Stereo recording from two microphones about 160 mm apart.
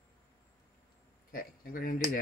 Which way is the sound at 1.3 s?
65° left (ahead or behind).